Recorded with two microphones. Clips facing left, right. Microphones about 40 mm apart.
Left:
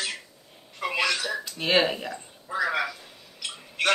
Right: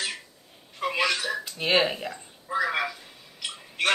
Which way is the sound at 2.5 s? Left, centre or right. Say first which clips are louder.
Even; centre.